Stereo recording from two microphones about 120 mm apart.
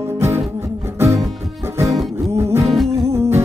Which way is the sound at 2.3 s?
20° right (ahead or behind).